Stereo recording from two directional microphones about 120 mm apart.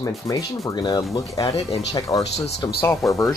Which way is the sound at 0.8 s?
30° left (ahead or behind).